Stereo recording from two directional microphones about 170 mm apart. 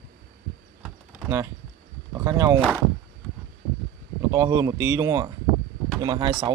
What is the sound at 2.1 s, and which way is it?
Speech, 15° right (ahead or behind).